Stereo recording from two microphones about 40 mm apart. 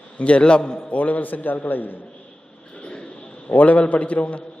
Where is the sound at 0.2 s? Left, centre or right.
Left.